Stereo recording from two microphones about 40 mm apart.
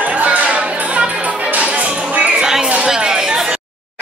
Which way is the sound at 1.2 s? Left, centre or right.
Right.